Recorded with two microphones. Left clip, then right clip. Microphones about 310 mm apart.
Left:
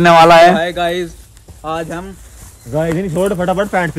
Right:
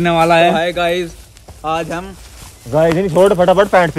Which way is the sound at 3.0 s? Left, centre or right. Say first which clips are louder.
Right 6 dB; right.